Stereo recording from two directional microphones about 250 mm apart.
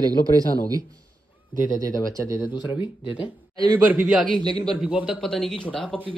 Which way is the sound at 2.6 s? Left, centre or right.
Centre.